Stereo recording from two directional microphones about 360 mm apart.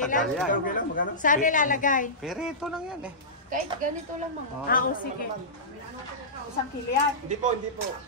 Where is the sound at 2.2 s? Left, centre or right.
Centre.